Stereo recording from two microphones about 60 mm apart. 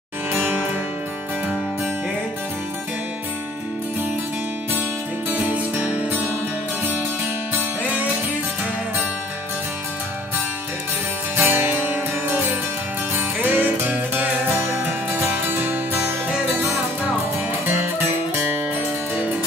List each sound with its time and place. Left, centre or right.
0.3 s music: right
5.3 s music: right
11.3 s music: right
14.8 s music: right
18.3 s music: right